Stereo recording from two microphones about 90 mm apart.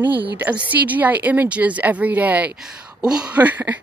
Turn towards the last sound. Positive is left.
turn(degrees=-20)  # may be behind; listen again after turning